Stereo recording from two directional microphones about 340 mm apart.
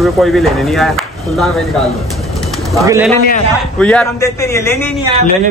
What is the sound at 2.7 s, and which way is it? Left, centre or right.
Speech, centre.